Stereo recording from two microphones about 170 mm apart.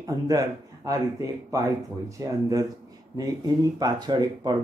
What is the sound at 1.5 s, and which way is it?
Speech, 20° right (ahead or behind).